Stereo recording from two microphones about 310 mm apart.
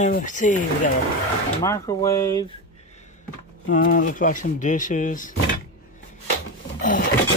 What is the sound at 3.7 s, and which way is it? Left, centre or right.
Speech, left.